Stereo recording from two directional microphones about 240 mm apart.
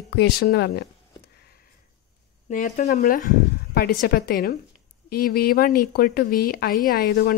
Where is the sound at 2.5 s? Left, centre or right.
Left.